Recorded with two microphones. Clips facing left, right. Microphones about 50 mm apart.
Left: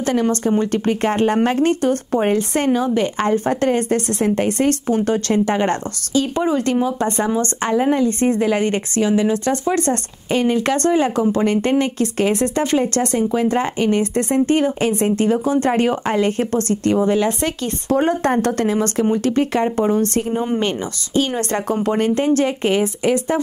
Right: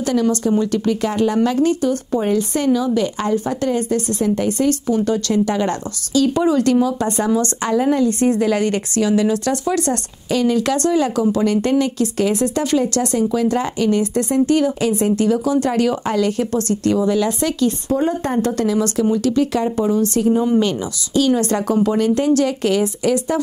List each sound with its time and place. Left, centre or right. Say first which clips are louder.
0.0 s speech: even; left
17.8 s speech: left 2 dB; left